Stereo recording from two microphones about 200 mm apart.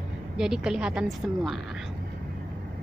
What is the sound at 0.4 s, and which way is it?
A woman's voice, 5° right (ahead or behind).